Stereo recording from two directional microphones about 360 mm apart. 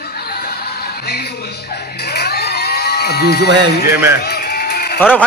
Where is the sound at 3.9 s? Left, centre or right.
Centre.